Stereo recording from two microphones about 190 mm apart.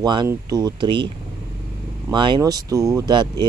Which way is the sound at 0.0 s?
25° right (ahead or behind).